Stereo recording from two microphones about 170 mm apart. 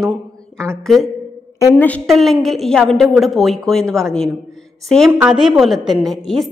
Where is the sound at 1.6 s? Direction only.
20° left (ahead or behind).